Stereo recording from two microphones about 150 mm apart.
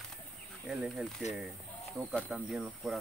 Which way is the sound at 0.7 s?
Centre (ahead or behind).